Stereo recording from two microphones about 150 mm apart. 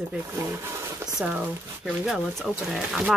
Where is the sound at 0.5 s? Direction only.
20° right (ahead or behind).